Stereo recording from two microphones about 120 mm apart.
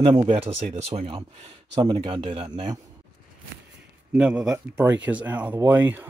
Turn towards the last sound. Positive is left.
turn(degrees=-15)  # may be behind; listen again after turning